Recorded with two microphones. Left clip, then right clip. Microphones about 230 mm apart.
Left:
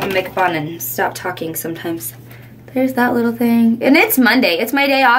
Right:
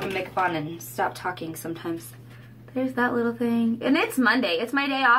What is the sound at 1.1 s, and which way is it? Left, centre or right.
Speech, centre.